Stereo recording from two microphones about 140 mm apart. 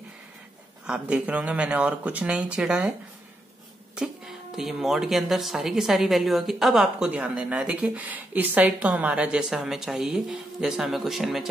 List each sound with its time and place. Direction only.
0.8 s speech: 5° right (ahead or behind)
3.9 s speech: 5° right (ahead or behind)